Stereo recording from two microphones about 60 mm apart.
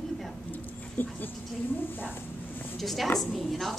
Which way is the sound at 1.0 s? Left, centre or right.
Left.